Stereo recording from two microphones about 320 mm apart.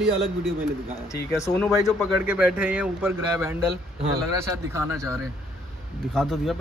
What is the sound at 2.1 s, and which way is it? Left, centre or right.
Speech, centre.